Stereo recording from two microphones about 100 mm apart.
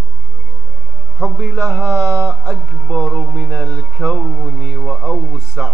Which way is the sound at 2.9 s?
10° left (ahead or behind).